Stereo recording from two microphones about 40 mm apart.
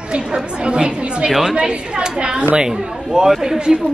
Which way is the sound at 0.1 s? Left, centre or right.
Right.